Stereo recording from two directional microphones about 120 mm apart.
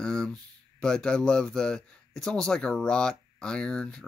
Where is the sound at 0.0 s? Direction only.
5° left (ahead or behind).